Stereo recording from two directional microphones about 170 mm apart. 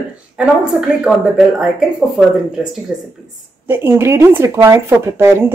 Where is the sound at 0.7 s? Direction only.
5° right (ahead or behind).